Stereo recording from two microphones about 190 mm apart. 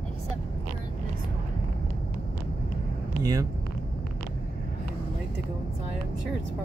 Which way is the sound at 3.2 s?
20° right (ahead or behind).